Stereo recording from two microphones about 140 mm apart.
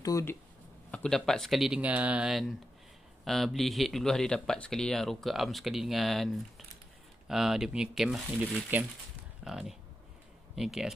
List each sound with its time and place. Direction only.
0.0 s speech: 20° left (ahead or behind)
0.9 s speech: 5° left (ahead or behind)